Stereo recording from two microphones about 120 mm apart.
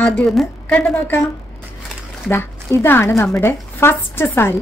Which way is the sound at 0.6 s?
15° left (ahead or behind).